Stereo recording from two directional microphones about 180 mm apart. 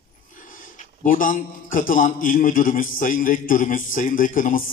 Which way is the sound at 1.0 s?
50° left (ahead or behind).